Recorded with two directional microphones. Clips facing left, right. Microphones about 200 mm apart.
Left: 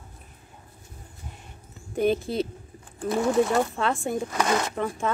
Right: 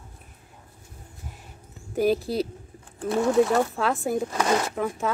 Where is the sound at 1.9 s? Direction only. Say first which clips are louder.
Right 1 dB; 5° right (ahead or behind).